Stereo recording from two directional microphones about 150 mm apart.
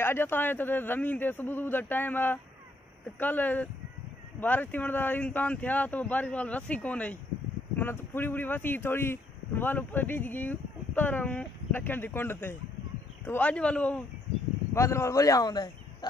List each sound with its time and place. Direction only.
0.0 s speech: 15° left (ahead or behind)
14.7 s speech: 20° left (ahead or behind)